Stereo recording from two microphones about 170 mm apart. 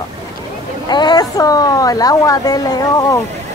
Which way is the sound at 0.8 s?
25° left (ahead or behind).